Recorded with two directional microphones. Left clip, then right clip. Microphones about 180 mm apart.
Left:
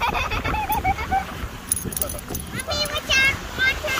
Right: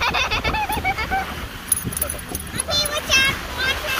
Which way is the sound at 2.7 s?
30° right (ahead or behind).